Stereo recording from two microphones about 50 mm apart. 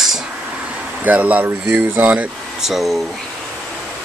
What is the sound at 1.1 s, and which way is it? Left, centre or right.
Speech, right.